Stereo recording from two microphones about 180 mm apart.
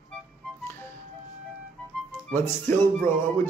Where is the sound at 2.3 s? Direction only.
10° left (ahead or behind).